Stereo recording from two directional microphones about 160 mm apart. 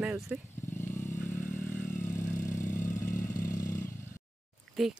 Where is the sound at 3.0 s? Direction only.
55° left (ahead or behind).